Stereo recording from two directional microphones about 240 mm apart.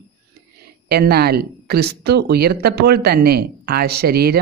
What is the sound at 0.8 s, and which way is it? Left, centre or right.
Speech, right.